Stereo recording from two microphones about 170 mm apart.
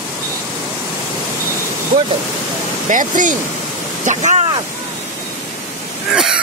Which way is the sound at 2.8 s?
50° right (ahead or behind).